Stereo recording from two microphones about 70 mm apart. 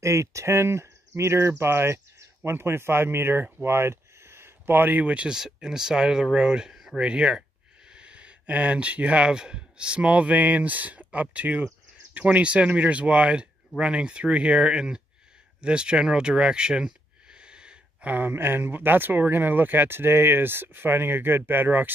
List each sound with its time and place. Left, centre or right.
0.0 s speech: right; by 15.0 s centre
15.6 s a sound: centre
18.1 s speech: right